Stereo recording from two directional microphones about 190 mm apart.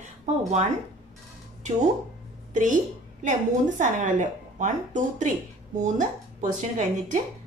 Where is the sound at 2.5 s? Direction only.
40° right (ahead or behind).